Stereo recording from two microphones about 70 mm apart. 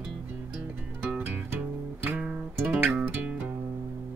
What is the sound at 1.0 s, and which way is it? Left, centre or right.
Music, right.